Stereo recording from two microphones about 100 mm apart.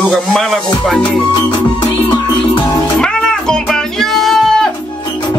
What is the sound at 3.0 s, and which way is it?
Music, 5° left (ahead or behind).